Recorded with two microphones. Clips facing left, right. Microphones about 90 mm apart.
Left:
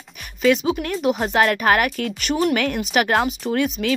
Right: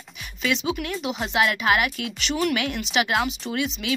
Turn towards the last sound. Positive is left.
turn(degrees=45)  # may be behind; listen again after turning